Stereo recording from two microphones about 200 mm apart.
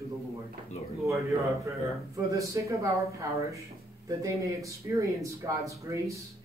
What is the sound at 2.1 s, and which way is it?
Speech, 15° right (ahead or behind).